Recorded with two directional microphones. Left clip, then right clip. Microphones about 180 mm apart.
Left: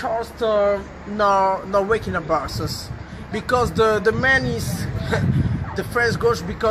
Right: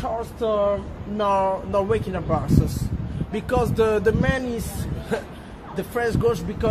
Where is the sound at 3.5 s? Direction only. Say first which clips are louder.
Left 3 dB; 15° right (ahead or behind).